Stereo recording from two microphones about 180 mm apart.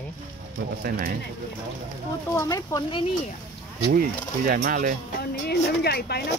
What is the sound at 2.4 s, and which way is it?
Speech, 15° left (ahead or behind).